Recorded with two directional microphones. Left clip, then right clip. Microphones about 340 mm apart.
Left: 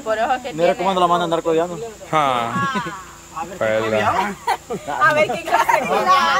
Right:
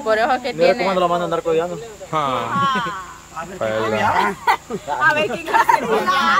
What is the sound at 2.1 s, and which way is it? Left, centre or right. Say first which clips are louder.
Speech: left 3 dB; centre.